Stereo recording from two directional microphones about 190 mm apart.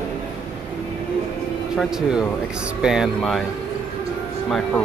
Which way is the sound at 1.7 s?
Centre (ahead or behind).